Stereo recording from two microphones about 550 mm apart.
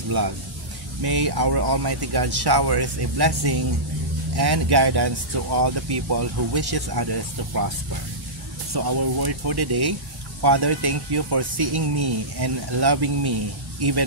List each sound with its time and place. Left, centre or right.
1.0 s speech: right
8.7 s speech: right